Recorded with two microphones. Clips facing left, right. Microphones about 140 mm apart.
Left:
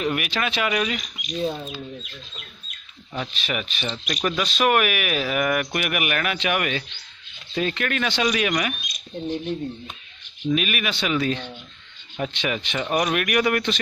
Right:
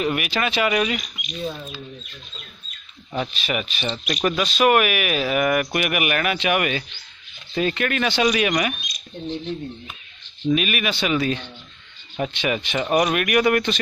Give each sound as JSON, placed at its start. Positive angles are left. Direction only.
{"t": 0.0, "sound": "speech", "side_deg": -5}
{"t": 1.2, "sound": "speech", "side_deg": 35}
{"t": 3.3, "sound": "speech", "side_deg": -5}
{"t": 10.5, "sound": "speech", "side_deg": 0}